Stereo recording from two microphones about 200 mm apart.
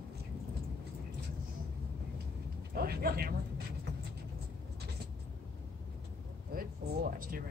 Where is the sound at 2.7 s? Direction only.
50° right (ahead or behind).